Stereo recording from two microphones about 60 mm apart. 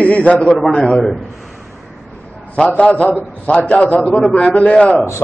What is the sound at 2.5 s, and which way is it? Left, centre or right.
A man's voice, left.